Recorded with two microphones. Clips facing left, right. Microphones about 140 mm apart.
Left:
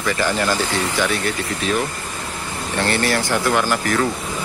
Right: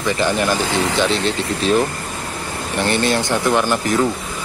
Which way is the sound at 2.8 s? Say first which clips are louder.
Right 2 dB; 20° right (ahead or behind).